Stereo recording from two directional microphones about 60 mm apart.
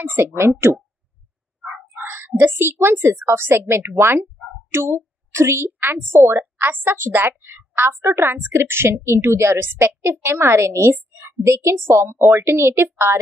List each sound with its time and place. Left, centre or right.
0.0 s a woman's voice: right
1.6 s crow: centre
1.9 s a woman's voice: right
5.7 s a woman's voice: right
12.0 s speech: right
12.4 s a woman's voice: right